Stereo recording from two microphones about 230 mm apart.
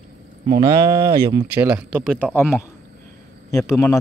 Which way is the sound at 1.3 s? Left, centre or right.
Centre.